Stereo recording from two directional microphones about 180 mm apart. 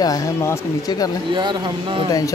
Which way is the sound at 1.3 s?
25° right (ahead or behind).